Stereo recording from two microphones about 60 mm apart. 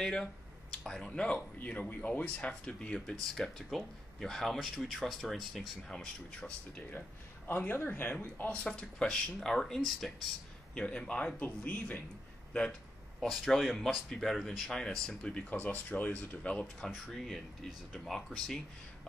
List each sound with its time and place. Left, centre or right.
0.0 s speech: centre
1.6 s speech: left; by 6.5 s centre
7.4 s speech: left
8.5 s speech: centre
10.7 s speech: centre
13.2 s speech: centre
15.5 s speech: left
17.6 s speech: centre